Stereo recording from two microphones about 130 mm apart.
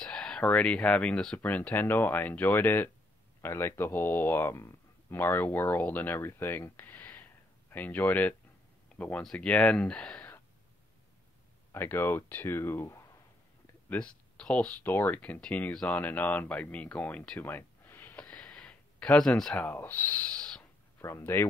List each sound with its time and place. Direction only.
0.0 s speech: 5° left (ahead or behind)
8.8 s a sound: 10° left (ahead or behind)
9.2 s speech: 5° left (ahead or behind)
11.7 s speech: 20° left (ahead or behind)
13.8 s speech: 10° left (ahead or behind)
21.0 s speech: 20° left (ahead or behind)